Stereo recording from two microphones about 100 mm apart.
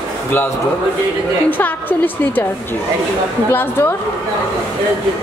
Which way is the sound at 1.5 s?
15° left (ahead or behind).